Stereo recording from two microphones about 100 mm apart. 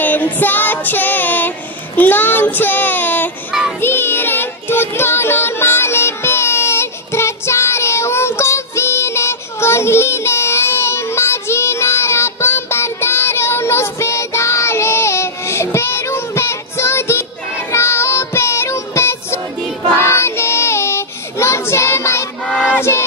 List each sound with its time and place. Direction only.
0.0 s child singing: 15° left (ahead or behind)
22.5 s music: 10° left (ahead or behind)
22.8 s a sound: 25° left (ahead or behind)